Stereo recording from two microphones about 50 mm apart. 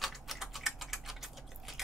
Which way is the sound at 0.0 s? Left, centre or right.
Centre.